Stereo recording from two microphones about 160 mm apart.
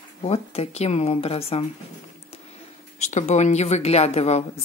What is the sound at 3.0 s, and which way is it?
Speech, 45° left (ahead or behind).